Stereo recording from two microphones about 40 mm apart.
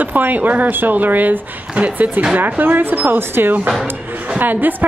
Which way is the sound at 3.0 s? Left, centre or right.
Right.